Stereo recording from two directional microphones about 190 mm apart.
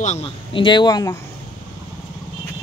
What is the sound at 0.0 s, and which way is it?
Speech, 35° left (ahead or behind).